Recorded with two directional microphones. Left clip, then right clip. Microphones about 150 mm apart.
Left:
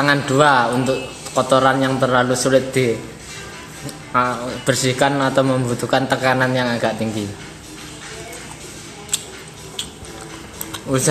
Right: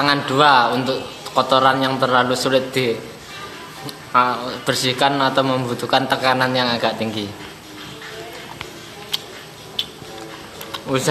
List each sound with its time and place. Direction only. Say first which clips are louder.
0.0 s a man's voice: even; 20° left (ahead or behind)
4.1 s a man's voice: right 2 dB; 15° left (ahead or behind)
10.7 s a sound: even; 15° left (ahead or behind)